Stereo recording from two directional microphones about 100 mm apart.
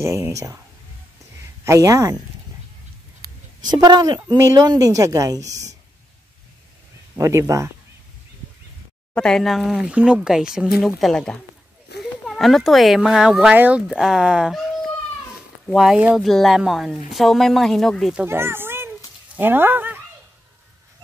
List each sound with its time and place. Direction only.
0.0 s a woman's voice: 30° right (ahead or behind)
1.6 s a woman's voice: 30° right (ahead or behind)
3.6 s a woman's voice: 45° right (ahead or behind)
7.2 s speech: 30° right (ahead or behind)
9.1 s speech: 5° left (ahead or behind); by 13.8 s 15° right (ahead or behind)
13.8 s speech: 5° right (ahead or behind)
15.6 s speech: centre (ahead or behind)
18.2 s a sound: 25° right (ahead or behind)
19.3 s speech: 20° right (ahead or behind)